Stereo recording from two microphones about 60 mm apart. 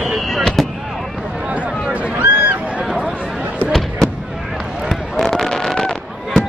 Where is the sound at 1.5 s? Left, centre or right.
Right.